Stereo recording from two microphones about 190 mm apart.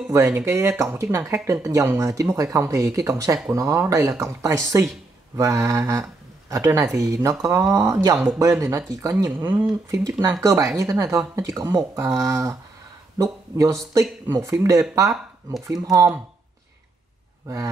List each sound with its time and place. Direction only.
0.1 s speech: 15° right (ahead or behind)